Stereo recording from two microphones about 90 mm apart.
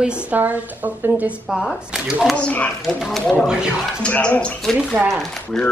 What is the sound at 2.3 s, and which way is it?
Speech, 15° left (ahead or behind).